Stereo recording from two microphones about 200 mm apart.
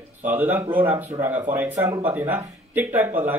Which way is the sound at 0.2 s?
10° right (ahead or behind).